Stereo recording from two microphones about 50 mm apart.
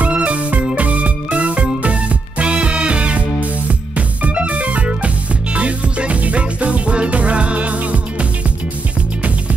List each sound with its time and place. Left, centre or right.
0.0 s music: right